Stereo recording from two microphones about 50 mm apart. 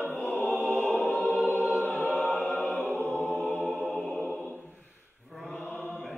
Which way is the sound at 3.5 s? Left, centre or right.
Left.